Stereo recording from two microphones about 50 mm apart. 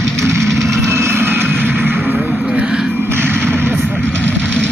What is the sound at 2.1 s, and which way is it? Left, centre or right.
Vehicle, centre.